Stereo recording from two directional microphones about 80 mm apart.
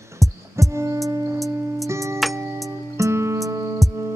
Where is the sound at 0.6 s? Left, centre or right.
Right.